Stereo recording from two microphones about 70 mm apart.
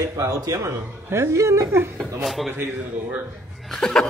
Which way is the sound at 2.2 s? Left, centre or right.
Centre.